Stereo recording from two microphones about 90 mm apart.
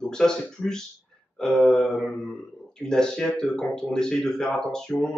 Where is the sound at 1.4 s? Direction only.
5° left (ahead or behind).